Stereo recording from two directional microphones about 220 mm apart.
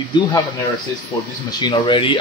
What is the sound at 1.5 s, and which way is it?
Speech, 20° left (ahead or behind).